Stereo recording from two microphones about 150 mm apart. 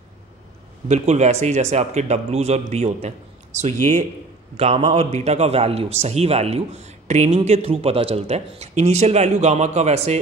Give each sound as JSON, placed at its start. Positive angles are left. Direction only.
{"t": 0.8, "sound": "a man's voice", "side_deg": -50}
{"t": 4.6, "sound": "a man's voice", "side_deg": -40}